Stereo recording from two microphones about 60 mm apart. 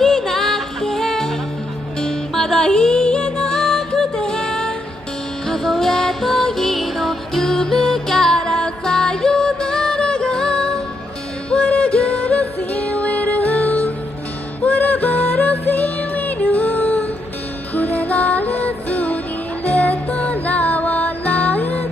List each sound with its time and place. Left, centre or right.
0.0 s music: centre; by 21.8 s left